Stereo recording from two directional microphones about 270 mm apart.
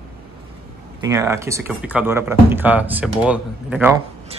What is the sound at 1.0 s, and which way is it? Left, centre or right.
Speech, centre.